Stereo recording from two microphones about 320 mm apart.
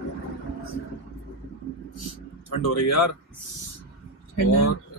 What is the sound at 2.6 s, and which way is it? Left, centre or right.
Speech, left.